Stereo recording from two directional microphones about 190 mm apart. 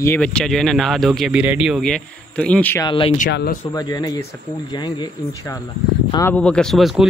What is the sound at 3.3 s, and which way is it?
Speech, 55° left (ahead or behind).